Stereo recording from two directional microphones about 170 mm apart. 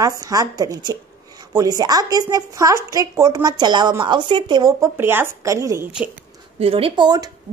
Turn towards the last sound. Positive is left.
turn(degrees=-25)  # may be behind; listen again after turning